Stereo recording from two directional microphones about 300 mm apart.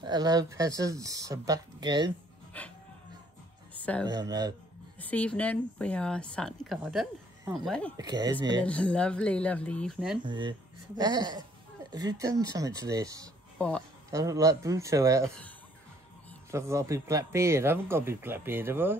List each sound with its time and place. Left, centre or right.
0.0 s speech: centre
2.5 s speech: centre
3.7 s music: centre
4.1 s speech: centre
4.9 s speech: centre
8.0 s speech: centre
8.6 s speech: centre
10.2 s speech: centre
13.6 s speech: centre
14.1 s speech: centre
16.4 s speech: centre